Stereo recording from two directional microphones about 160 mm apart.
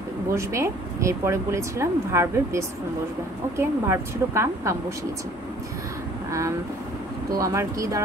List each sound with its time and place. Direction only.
0.3 s speech: 15° right (ahead or behind)
7.3 s speech: 20° right (ahead or behind)